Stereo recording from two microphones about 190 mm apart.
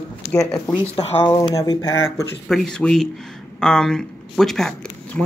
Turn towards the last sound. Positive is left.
turn(degrees=5)  # may be behind; listen again after turning